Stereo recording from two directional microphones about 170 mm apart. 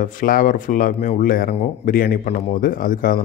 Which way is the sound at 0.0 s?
50° left (ahead or behind).